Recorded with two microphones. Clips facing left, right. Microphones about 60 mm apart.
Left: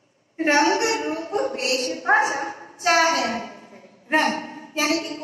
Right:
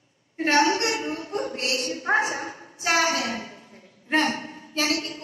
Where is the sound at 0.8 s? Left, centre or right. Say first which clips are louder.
Left 3 dB; left.